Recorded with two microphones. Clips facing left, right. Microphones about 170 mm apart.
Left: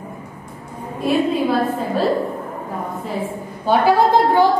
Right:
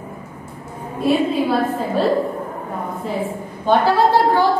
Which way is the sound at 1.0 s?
Centre (ahead or behind).